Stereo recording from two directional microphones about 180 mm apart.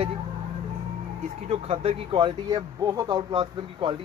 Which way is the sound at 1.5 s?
30° right (ahead or behind).